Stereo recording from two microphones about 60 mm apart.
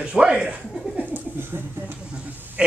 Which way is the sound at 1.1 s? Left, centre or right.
Right.